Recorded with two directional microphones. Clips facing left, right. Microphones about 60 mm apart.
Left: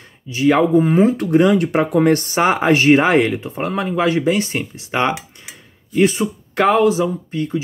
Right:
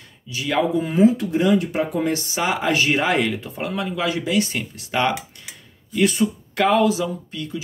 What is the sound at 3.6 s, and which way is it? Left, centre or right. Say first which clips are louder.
Speech: left 6 dB; left.